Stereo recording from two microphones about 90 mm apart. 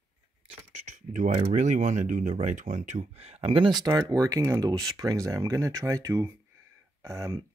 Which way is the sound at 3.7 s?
45° right (ahead or behind).